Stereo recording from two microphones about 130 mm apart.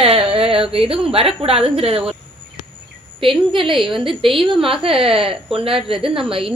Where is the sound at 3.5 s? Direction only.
40° right (ahead or behind).